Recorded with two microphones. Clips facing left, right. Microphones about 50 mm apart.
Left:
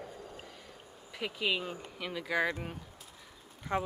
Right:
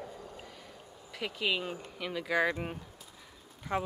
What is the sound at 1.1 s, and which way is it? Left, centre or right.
Speech, centre.